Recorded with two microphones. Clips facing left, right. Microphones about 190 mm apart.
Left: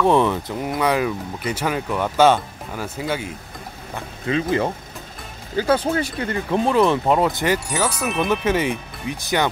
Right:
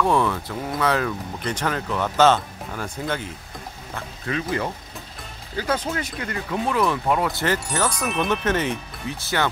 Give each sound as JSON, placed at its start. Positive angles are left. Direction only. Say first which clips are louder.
{"t": 0.0, "sound": "speech", "louder": "left 4 dB", "side_deg": 20}
{"t": 3.9, "sound": "speech", "louder": "left 5 dB", "side_deg": 25}
{"t": 7.7, "sound": "speech", "louder": "left 2 dB", "side_deg": 5}